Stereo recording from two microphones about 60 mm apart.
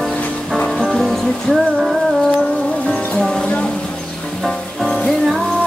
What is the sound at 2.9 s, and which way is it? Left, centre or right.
Music, left.